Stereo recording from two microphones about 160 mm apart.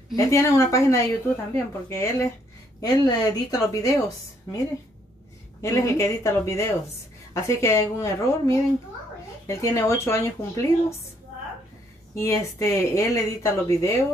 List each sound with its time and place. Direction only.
0.1 s speech: 20° left (ahead or behind)
5.6 s a woman's voice: 20° left (ahead or behind)
12.2 s speech: 20° left (ahead or behind)